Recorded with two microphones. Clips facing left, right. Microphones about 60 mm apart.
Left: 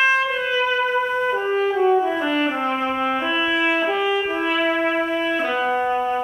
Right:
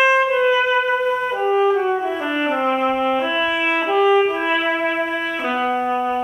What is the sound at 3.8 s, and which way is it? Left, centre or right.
French horn, centre.